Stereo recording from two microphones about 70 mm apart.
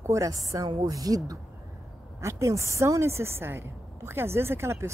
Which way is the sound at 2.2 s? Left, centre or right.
Right.